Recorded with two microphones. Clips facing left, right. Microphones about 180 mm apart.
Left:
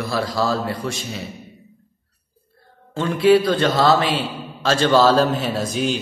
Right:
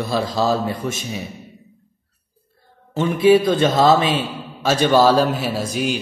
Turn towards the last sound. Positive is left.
turn(degrees=-10)  # may be behind; listen again after turning